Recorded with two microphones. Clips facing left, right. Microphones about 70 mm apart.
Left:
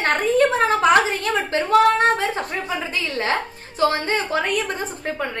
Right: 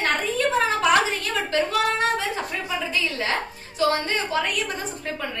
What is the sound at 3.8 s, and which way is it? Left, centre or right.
A woman's voice, left.